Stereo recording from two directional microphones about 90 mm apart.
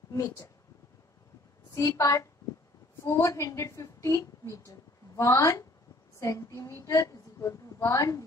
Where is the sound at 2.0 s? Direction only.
40° left (ahead or behind).